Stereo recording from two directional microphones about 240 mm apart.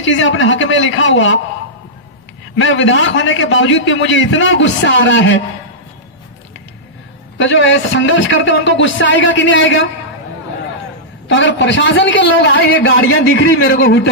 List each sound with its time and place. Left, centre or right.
0.0 s a man's voice: left
2.5 s a man's voice: left
7.3 s a man's voice: left
11.2 s a man's voice: left